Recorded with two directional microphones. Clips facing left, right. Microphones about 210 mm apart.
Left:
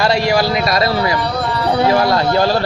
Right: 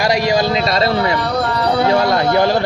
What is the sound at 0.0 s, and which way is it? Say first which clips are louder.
A man's voice: even; 15° right (ahead or behind).